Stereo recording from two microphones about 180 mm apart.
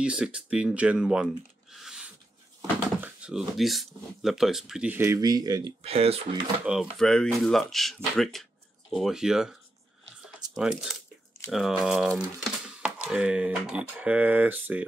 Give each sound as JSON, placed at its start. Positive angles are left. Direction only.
{"t": 0.0, "sound": "speech", "side_deg": -5}
{"t": 5.8, "sound": "speech", "side_deg": -35}
{"t": 6.6, "sound": "speech", "side_deg": -5}